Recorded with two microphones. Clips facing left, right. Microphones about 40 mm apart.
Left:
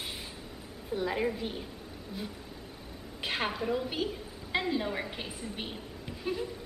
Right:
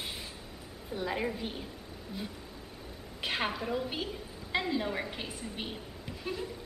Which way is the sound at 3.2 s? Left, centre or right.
Centre.